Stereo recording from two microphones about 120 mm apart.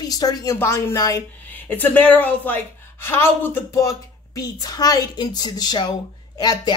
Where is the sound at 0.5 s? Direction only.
20° left (ahead or behind).